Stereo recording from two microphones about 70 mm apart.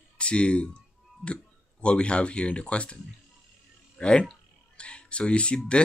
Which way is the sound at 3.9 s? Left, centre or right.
Centre.